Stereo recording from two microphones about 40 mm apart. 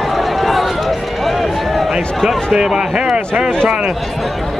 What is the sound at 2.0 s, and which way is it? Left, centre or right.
A man's voice, centre.